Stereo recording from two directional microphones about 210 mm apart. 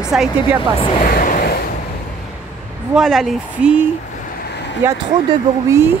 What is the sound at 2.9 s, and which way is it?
Speech, centre (ahead or behind).